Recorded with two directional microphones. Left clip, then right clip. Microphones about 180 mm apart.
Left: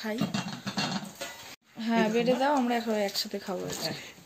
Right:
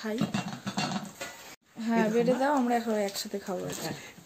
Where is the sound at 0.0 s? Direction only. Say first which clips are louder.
Even; 10° right (ahead or behind).